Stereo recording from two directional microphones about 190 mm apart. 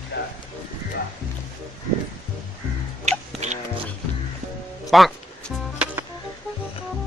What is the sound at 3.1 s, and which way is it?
Chicken, 35° right (ahead or behind).